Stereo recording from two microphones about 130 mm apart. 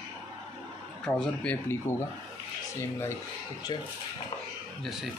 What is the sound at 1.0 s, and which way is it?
Speech, 5° left (ahead or behind).